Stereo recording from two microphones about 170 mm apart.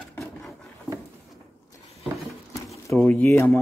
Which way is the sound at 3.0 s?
5° left (ahead or behind).